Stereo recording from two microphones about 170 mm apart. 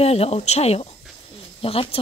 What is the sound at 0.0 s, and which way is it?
Speech, 35° left (ahead or behind).